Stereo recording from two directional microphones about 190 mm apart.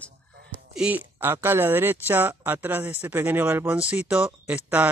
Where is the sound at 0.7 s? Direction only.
5° right (ahead or behind).